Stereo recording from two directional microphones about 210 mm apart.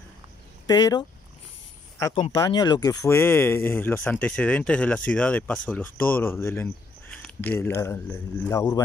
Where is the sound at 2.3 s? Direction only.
20° left (ahead or behind).